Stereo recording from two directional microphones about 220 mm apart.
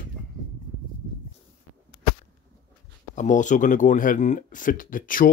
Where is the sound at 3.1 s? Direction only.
35° left (ahead or behind).